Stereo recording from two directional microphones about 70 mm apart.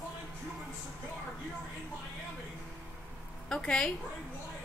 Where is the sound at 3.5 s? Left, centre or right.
Centre.